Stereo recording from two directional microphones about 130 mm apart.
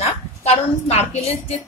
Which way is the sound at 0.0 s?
55° left (ahead or behind).